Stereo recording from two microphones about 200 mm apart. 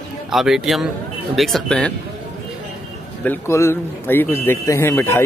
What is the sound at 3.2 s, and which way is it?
Speech, 10° left (ahead or behind).